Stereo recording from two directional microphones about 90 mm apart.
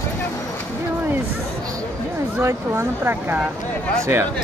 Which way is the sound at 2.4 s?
30° right (ahead or behind).